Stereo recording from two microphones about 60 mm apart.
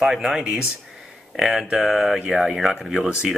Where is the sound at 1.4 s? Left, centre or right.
Centre.